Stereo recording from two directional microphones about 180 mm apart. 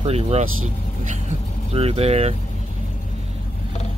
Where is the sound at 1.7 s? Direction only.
35° right (ahead or behind).